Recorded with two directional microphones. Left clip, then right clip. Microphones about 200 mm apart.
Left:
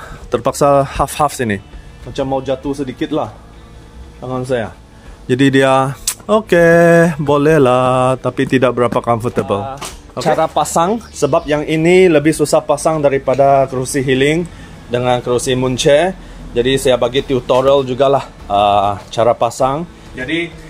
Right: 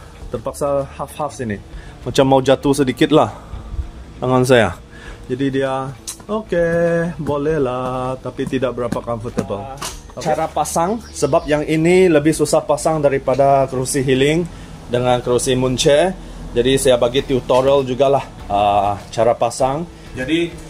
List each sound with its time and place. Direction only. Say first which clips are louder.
0.3 s speech: left 8 dB; 55° left (ahead or behind)
2.1 s speech: right 5 dB; 50° right (ahead or behind)
5.3 s speech: left 8 dB; 60° left (ahead or behind)
10.2 s speech: left 5 dB; 25° left (ahead or behind)